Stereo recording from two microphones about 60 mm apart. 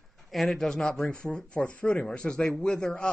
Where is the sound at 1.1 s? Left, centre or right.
Centre.